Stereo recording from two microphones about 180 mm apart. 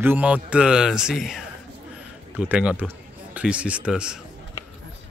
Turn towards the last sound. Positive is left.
turn(degrees=-5)  # may be behind; listen again after turning